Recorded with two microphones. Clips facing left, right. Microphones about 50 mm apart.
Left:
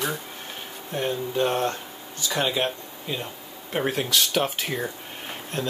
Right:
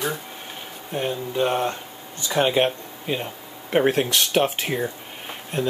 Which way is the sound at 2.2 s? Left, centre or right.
Right.